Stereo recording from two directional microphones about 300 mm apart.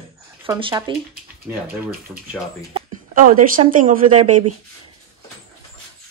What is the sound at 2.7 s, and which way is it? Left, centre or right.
Speech, right.